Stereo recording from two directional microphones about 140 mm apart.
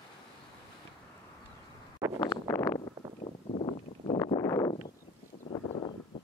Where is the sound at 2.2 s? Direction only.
20° left (ahead or behind).